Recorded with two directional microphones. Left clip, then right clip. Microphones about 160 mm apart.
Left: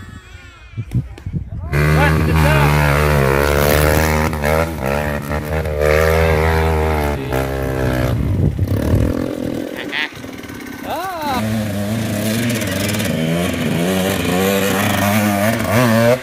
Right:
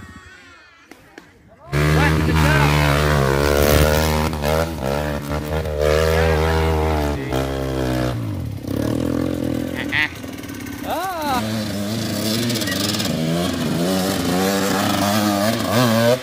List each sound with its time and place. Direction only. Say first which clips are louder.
1.7 s a sound: left 3 dB; 5° left (ahead or behind)
3.3 s a sound: left 1 dB; 5° left (ahead or behind)
8.7 s vehicle: even; 5° left (ahead or behind)
10.9 s vehicle: left 1 dB; 70° right (ahead or behind)
12.3 s vehicle: left 1 dB; 10° left (ahead or behind)
14.7 s chainsaw: left 2 dB; 15° left (ahead or behind)